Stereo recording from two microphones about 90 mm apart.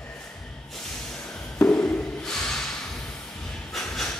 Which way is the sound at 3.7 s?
5° left (ahead or behind).